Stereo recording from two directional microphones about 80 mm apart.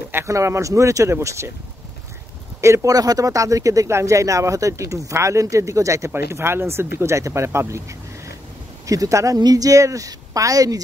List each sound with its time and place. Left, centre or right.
0.1 s speech: right
2.6 s speech: right
8.8 s a woman's voice: right